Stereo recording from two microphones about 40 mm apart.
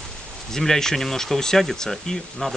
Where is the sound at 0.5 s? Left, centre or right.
Centre.